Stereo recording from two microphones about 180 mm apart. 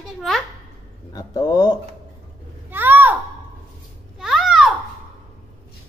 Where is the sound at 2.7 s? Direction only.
10° right (ahead or behind).